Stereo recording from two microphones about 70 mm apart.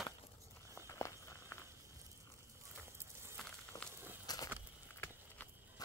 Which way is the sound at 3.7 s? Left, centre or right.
Left.